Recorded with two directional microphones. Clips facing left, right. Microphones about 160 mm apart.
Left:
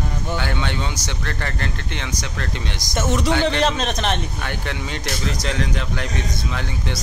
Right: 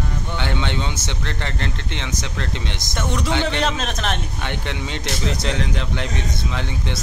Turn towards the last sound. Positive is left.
turn(degrees=-25)  # may be behind; listen again after turning